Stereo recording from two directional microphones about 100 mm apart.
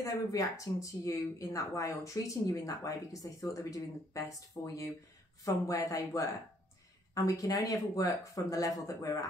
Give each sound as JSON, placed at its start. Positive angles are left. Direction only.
{"t": 0.0, "sound": "speech", "side_deg": 35}
{"t": 7.2, "sound": "speech", "side_deg": 35}